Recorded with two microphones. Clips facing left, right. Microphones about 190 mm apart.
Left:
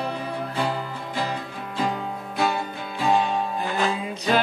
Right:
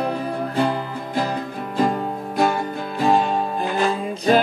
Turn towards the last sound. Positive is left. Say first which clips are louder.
# right 5 dB
turn(degrees=-45)  # may be behind; listen again after turning